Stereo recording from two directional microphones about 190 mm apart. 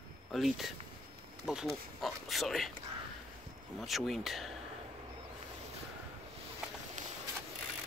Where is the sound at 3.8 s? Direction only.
Centre (ahead or behind).